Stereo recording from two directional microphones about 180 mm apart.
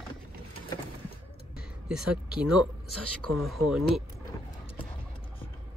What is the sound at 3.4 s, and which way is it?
Speech, centre (ahead or behind).